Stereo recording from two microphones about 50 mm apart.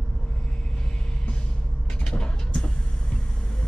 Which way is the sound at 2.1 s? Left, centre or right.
Centre.